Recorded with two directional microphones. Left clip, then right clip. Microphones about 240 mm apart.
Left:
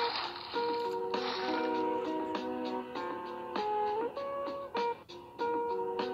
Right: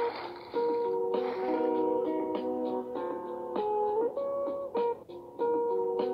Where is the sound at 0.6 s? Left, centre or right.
Left.